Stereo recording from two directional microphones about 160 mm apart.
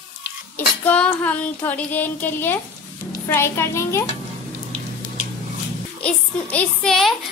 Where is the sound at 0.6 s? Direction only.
10° left (ahead or behind).